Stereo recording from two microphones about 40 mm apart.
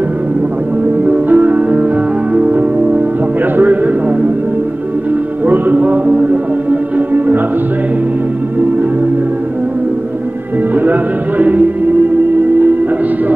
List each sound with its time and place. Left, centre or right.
1.0 s music: right
3.5 s a sound: right
5.5 s music: right
10.7 s music: right